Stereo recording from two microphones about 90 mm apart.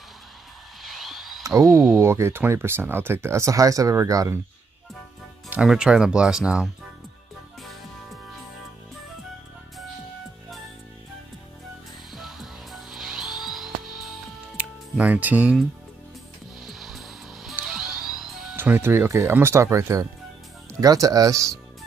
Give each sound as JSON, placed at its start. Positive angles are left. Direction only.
{"t": 0.8, "sound": "a sound", "side_deg": 0}
{"t": 1.4, "sound": "speech", "side_deg": -40}
{"t": 5.5, "sound": "speech", "side_deg": -5}
{"t": 12.1, "sound": "music", "side_deg": -5}
{"t": 14.6, "sound": "music", "side_deg": -15}
{"t": 16.6, "sound": "music", "side_deg": 0}
{"t": 18.6, "sound": "speech", "side_deg": -25}